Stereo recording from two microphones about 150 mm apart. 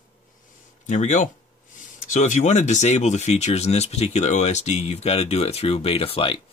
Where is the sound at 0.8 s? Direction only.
55° left (ahead or behind).